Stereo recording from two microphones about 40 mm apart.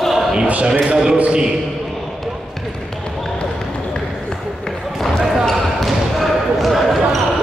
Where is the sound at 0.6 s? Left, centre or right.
Right.